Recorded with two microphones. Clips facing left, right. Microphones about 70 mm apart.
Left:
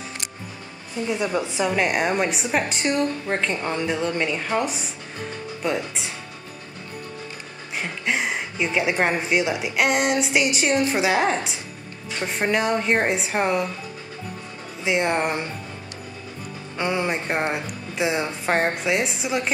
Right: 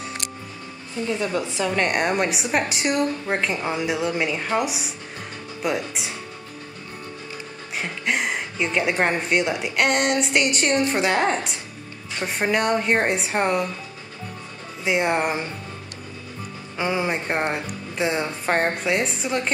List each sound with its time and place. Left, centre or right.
1.0 s a woman's voice: centre
1.7 s a woman's voice: centre
7.7 s a woman's voice: centre
14.8 s a woman's voice: centre
16.7 s a woman's voice: centre